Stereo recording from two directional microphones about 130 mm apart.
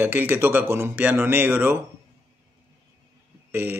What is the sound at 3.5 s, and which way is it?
Speech, 15° right (ahead or behind).